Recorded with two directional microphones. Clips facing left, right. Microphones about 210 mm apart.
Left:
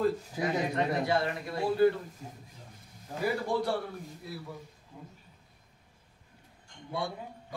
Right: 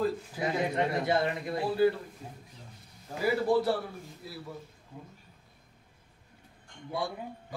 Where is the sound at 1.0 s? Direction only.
20° right (ahead or behind).